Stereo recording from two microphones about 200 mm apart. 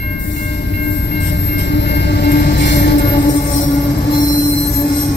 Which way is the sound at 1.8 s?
60° left (ahead or behind).